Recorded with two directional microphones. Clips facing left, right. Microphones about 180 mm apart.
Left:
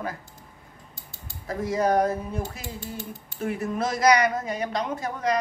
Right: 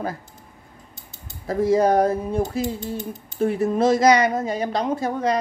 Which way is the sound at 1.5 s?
30° right (ahead or behind).